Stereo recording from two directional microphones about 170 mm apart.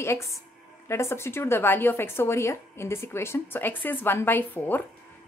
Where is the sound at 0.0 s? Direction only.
15° left (ahead or behind).